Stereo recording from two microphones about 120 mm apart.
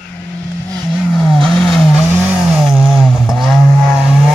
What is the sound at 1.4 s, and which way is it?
Vehicle, 5° left (ahead or behind).